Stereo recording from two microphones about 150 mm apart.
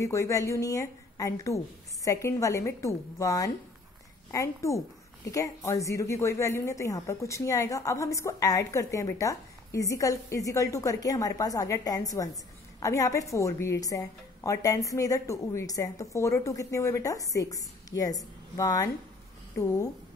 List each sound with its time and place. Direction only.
0.0 s speech: 20° left (ahead or behind)